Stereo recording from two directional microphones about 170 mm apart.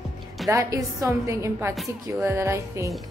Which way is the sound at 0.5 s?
20° right (ahead or behind).